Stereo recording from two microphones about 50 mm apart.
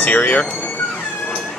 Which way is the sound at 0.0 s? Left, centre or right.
Left.